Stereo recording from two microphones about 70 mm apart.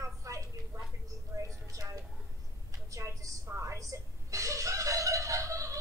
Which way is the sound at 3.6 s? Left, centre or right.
Right.